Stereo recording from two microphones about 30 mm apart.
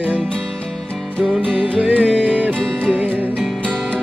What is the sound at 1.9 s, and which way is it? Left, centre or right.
Music, right.